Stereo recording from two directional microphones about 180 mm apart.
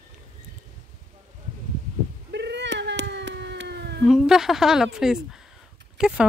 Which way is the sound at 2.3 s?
75° right (ahead or behind).